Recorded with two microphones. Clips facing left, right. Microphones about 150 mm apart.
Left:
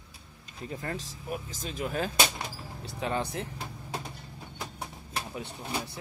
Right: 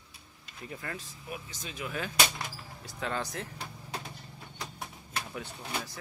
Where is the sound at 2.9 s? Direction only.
20° left (ahead or behind).